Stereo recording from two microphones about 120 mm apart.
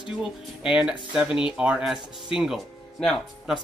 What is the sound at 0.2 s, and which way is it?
Speech, 5° right (ahead or behind).